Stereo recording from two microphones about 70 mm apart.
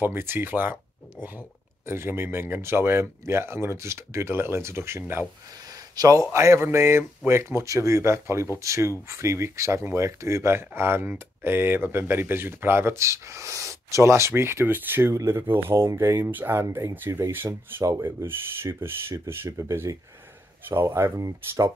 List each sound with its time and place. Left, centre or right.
0.0 s speech: right
5.7 s speech: right
16.3 s speech: right
16.6 s speech: right
18.2 s speech: right
20.6 s speech: right
21.2 s speech: right